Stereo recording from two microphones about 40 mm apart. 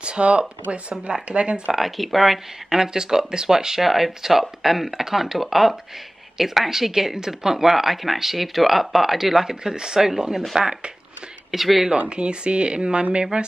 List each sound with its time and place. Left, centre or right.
0.0 s speech: right
1.7 s speech: centre
2.7 s speech: centre
12.1 s speech: right